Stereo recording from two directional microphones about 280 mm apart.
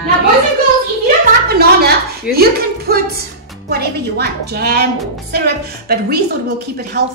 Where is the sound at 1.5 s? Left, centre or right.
Right.